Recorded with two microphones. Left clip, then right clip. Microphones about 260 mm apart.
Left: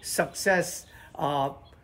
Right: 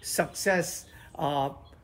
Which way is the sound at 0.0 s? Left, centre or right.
Centre.